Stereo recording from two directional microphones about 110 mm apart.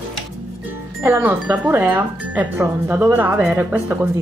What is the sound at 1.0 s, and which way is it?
Speech, 15° right (ahead or behind).